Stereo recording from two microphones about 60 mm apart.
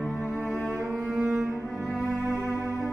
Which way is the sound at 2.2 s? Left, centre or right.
Right.